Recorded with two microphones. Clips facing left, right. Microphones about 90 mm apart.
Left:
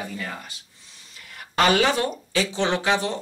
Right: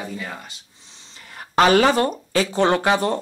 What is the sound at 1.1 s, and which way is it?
Speech, 35° right (ahead or behind).